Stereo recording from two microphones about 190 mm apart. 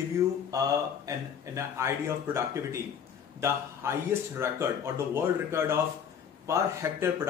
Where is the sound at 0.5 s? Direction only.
20° right (ahead or behind).